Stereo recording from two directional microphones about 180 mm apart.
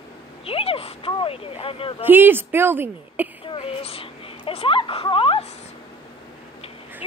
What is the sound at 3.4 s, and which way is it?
Speech, 30° left (ahead or behind).